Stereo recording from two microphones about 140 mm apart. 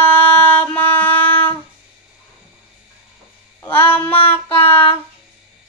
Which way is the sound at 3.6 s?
15° left (ahead or behind).